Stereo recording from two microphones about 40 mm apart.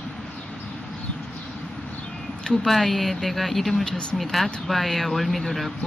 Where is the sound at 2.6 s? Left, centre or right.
Centre.